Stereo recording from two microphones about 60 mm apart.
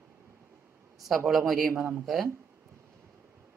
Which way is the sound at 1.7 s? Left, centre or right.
Right.